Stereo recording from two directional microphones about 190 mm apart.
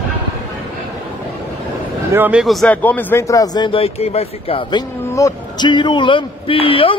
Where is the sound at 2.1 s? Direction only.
10° right (ahead or behind); by 4.8 s 30° left (ahead or behind).